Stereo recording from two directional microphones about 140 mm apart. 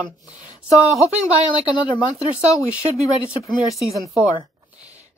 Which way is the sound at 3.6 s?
Centre (ahead or behind).